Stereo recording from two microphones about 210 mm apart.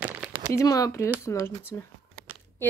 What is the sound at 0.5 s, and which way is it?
Speech, 15° left (ahead or behind).